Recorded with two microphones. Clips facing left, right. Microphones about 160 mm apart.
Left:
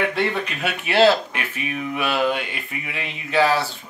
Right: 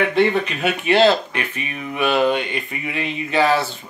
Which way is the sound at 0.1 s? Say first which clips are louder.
Right 6 dB; centre (ahead or behind).